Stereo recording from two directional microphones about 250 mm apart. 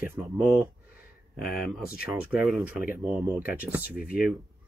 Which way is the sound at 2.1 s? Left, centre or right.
Centre.